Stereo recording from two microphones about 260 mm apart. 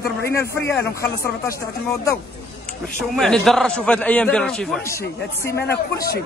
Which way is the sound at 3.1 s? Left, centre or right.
Centre.